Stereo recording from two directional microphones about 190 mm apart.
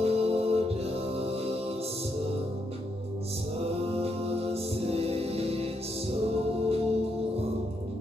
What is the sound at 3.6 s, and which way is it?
Music, 30° right (ahead or behind).